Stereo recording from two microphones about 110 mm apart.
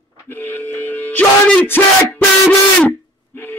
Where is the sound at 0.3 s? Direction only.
25° left (ahead or behind).